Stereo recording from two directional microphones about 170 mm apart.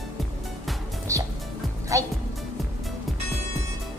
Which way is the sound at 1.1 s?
20° right (ahead or behind).